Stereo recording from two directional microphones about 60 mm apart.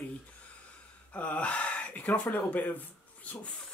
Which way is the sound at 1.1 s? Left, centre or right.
Left.